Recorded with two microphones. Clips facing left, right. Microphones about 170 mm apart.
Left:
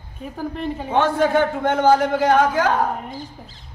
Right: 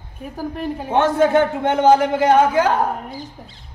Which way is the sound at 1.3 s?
20° right (ahead or behind).